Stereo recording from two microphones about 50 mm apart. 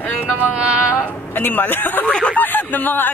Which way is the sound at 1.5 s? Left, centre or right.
Left.